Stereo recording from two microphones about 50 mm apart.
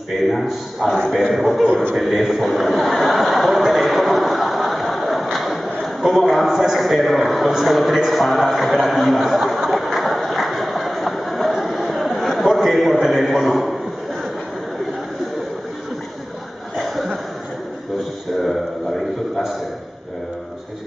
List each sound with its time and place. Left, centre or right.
0.3 s a man's voice: centre
0.9 s a man's voice: centre
1.7 s a man's voice: centre
2.0 s chuckle: centre
16.7 s cough: centre